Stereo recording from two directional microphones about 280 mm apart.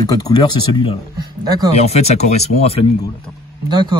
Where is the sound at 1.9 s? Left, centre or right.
Left.